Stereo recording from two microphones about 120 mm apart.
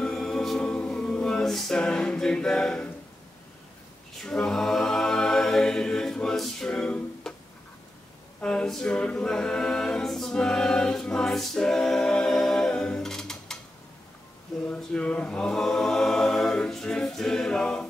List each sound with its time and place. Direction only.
0.0 s music: 5° left (ahead or behind)
4.2 s a capella: 5° left (ahead or behind)
8.4 s a capella: 10° left (ahead or behind)
14.6 s a capella: 10° left (ahead or behind)